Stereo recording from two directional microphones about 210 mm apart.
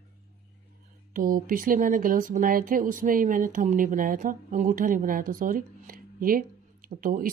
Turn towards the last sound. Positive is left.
turn(degrees=-40)  # may be behind; listen again after turning